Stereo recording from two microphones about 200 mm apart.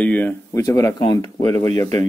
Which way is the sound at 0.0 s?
10° left (ahead or behind).